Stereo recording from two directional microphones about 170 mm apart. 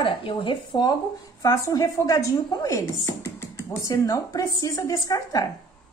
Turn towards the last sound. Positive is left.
turn(degrees=20)  # may be behind; listen again after turning